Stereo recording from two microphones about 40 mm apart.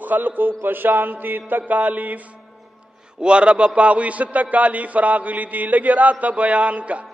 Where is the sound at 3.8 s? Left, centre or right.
Right.